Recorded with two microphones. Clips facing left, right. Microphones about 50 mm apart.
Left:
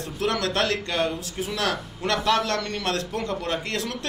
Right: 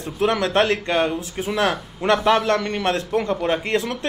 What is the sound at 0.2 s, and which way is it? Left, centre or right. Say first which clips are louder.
A man's voice: right 6 dB; right.